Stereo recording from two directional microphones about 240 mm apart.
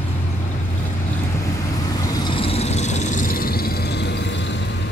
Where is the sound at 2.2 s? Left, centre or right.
Left.